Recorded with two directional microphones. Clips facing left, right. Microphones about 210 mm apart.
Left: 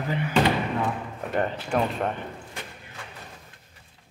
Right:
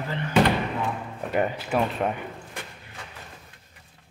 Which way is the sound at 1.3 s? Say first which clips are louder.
Right 1 dB; 10° right (ahead or behind).